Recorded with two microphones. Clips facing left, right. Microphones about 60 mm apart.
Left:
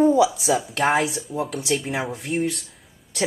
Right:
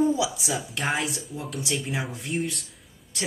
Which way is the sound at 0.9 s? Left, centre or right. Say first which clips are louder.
Left 5 dB; left.